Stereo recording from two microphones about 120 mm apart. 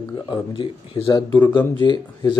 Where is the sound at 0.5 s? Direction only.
45° left (ahead or behind).